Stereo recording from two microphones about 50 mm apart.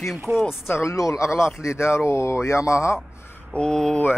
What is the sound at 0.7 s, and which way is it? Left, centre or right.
Speech, left.